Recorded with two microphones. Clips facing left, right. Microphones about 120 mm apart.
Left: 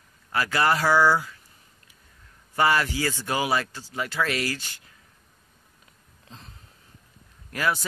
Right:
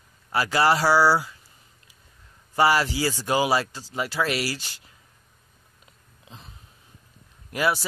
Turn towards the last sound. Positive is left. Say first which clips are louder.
# right 2 dB
turn(degrees=-15)  # may be behind; listen again after turning